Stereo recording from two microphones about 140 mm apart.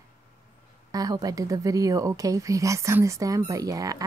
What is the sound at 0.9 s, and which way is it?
Speech, 25° right (ahead or behind).